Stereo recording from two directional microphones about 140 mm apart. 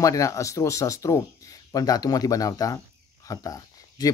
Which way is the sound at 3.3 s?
25° left (ahead or behind).